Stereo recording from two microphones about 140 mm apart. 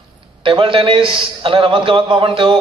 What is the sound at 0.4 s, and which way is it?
A man's voice, 40° right (ahead or behind).